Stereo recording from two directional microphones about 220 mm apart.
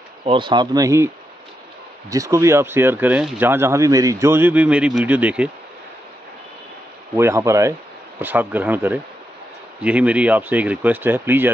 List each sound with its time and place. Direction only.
0.2 s speech: 25° right (ahead or behind); by 5.5 s 5° right (ahead or behind)
7.2 s speech: 10° right (ahead or behind)